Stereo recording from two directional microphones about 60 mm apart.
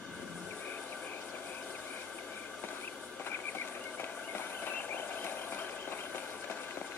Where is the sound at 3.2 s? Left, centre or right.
Left.